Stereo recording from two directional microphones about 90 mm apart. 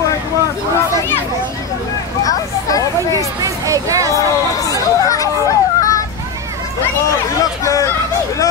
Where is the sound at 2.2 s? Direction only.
40° left (ahead or behind).